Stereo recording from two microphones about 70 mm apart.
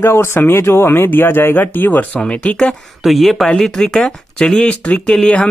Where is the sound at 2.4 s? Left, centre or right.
Centre.